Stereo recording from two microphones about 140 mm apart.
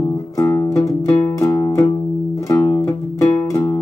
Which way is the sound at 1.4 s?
25° left (ahead or behind).